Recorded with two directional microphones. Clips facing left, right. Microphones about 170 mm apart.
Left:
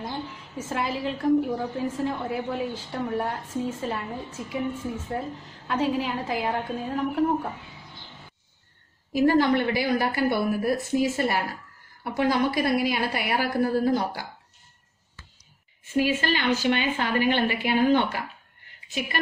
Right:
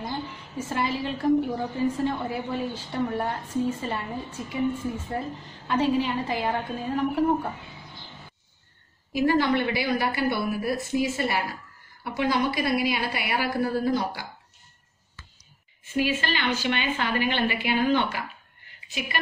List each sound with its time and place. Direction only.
0.0 s a woman's voice: centre (ahead or behind)
9.1 s a woman's voice: 40° left (ahead or behind)
16.0 s a woman's voice: 40° left (ahead or behind)